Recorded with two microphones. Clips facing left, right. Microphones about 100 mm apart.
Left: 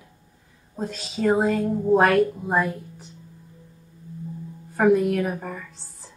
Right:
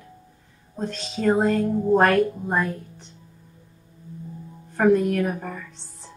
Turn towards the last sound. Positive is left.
turn(degrees=0)  # may be behind; listen again after turning